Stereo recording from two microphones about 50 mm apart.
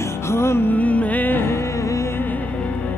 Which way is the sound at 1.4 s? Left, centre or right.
Left.